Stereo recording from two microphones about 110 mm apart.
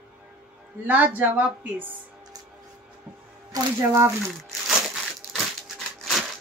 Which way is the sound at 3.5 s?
35° right (ahead or behind).